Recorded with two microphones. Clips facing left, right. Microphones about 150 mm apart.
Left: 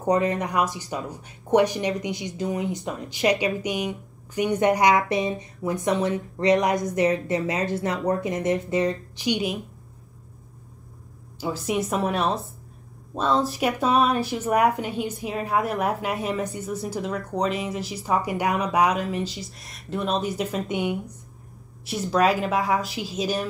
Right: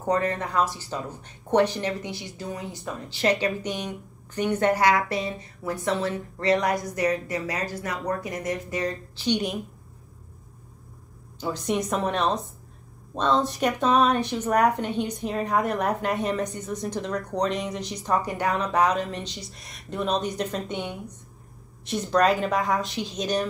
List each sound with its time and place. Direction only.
0.0 s a woman's voice: 15° left (ahead or behind)
11.3 s speech: 5° left (ahead or behind)